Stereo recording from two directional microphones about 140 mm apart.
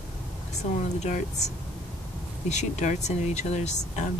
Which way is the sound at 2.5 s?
55° left (ahead or behind).